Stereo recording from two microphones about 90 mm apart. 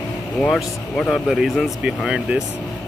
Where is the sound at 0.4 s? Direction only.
5° left (ahead or behind).